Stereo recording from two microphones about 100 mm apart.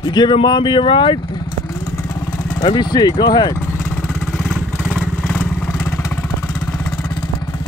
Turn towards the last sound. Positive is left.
turn(degrees=10)  # may be behind; listen again after turning